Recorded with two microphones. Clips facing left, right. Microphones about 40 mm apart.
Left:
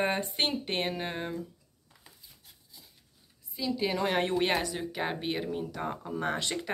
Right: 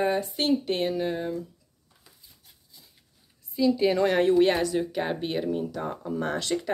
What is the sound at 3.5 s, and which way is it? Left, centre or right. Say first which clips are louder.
Speech: right 8 dB; centre.